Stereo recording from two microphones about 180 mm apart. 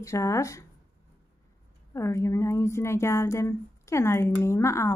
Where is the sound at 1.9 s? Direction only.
15° left (ahead or behind).